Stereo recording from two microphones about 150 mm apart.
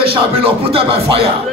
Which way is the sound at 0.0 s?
40° right (ahead or behind).